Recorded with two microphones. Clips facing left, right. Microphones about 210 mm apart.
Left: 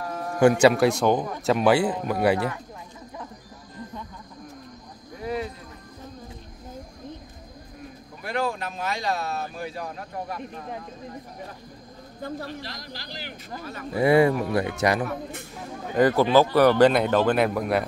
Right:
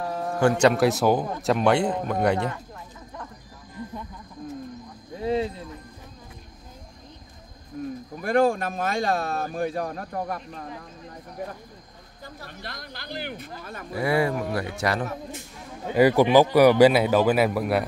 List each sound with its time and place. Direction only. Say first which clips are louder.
0.4 s speech: left 2 dB; 10° left (ahead or behind)
5.2 s a sound: right 5 dB; 25° right (ahead or behind)
7.8 s a sound: right 11 dB; 45° right (ahead or behind)
8.2 s speech: right 7 dB; 50° right (ahead or behind)
12.4 s speech: left 3 dB; 55° right (ahead or behind)
13.9 s speech: left 5 dB; 25° left (ahead or behind)
15.9 s speech: right 2 dB; 10° right (ahead or behind)